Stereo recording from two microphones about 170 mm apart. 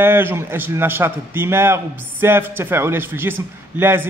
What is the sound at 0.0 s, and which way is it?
A man's voice, 15° right (ahead or behind).